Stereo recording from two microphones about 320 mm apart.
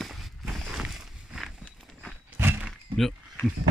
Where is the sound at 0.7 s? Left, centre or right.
Centre.